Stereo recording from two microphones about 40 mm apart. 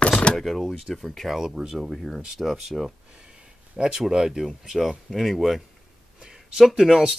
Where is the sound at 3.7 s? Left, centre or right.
Right.